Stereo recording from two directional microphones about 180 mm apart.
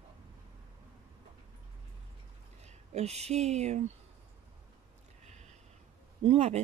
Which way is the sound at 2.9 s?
35° right (ahead or behind).